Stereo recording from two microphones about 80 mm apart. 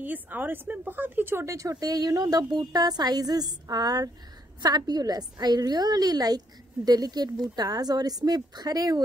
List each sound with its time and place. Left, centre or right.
0.0 s a woman's voice: right